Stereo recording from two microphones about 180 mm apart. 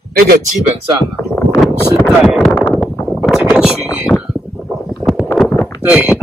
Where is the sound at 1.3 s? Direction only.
10° left (ahead or behind).